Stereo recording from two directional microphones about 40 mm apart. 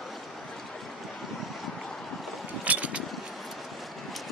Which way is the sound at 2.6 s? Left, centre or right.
Right.